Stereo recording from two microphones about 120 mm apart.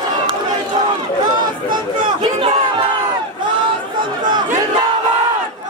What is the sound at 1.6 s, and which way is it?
Chatter, 45° right (ahead or behind).